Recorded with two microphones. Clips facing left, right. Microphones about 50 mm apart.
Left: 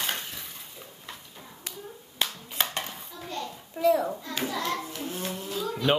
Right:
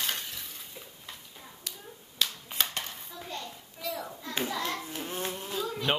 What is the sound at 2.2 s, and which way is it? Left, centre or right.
Finger snapping, left.